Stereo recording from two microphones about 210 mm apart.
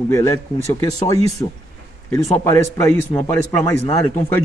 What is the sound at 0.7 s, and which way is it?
Speech, 15° left (ahead or behind).